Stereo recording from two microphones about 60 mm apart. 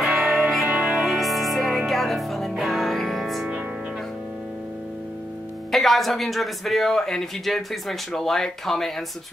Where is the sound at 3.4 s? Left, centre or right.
Right.